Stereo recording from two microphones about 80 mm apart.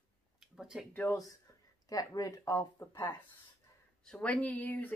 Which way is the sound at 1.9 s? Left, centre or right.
Left.